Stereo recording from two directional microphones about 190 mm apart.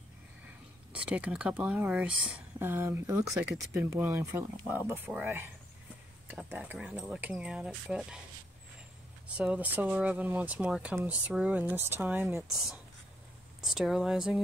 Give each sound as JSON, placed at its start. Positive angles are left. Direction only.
{"t": 0.9, "sound": "speech", "side_deg": -5}
{"t": 9.4, "sound": "speech", "side_deg": -5}
{"t": 13.6, "sound": "speech", "side_deg": 0}